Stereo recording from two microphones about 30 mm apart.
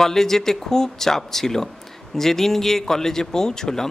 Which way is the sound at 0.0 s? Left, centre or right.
Centre.